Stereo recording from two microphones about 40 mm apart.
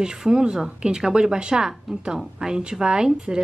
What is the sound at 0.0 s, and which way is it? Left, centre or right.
A woman's voice, centre.